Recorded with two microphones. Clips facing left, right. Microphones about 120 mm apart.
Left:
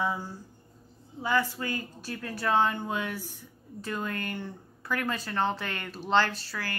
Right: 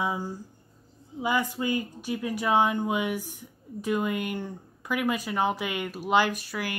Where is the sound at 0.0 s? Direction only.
15° right (ahead or behind).